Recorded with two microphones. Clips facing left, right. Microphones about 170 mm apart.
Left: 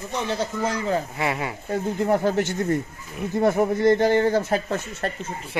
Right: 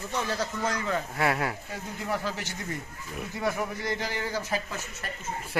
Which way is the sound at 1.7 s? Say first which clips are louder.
Left 11 dB; 55° left (ahead or behind).